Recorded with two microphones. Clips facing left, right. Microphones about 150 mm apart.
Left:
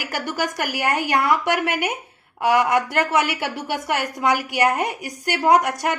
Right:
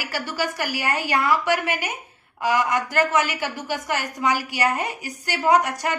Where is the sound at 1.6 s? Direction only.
60° left (ahead or behind).